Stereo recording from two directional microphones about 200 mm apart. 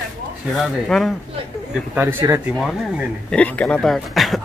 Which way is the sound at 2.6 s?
5° left (ahead or behind).